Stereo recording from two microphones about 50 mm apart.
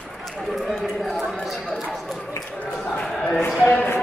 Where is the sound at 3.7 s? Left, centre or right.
Left.